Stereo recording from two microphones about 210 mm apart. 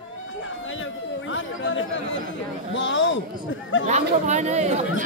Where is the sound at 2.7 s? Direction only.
60° left (ahead or behind).